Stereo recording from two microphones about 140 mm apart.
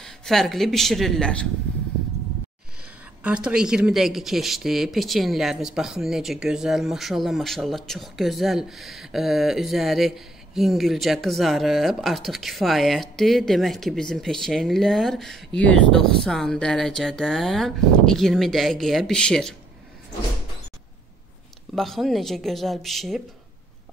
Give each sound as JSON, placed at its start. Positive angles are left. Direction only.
{"t": 0.0, "sound": "speech", "side_deg": 5}
{"t": 3.3, "sound": "speech", "side_deg": -5}
{"t": 21.7, "sound": "speech", "side_deg": 0}